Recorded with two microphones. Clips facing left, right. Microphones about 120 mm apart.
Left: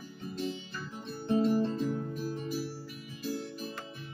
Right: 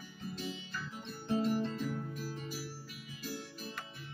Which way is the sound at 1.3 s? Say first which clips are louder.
Left 5 dB; 35° left (ahead or behind).